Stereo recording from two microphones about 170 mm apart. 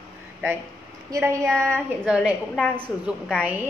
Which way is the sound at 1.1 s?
15° right (ahead or behind).